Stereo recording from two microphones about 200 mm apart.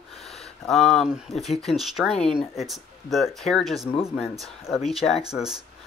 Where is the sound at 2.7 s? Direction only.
Centre (ahead or behind).